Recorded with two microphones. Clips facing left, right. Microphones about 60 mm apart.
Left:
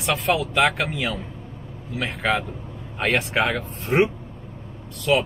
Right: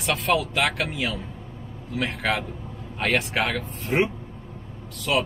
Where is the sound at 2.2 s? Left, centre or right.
Centre.